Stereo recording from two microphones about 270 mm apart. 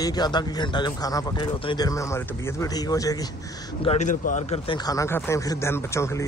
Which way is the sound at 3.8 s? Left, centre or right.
Left.